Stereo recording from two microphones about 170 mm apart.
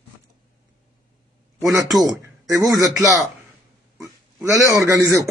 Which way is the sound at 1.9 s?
Centre (ahead or behind).